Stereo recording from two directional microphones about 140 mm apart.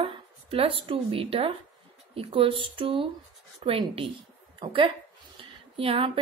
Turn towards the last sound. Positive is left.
turn(degrees=-40)  # may be behind; listen again after turning